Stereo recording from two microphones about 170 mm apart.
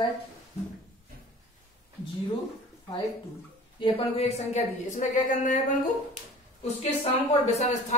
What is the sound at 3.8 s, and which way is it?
A woman's voice, 40° left (ahead or behind).